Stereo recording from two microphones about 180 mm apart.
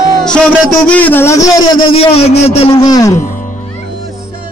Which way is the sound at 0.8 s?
10° left (ahead or behind).